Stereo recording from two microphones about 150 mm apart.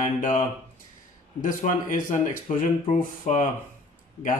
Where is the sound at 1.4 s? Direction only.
60° left (ahead or behind).